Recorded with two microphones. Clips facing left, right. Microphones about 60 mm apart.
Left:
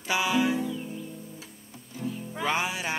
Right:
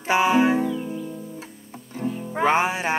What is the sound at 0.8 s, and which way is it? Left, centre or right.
Music, right.